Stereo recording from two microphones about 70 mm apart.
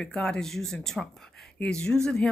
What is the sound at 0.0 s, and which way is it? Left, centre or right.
Speech, centre.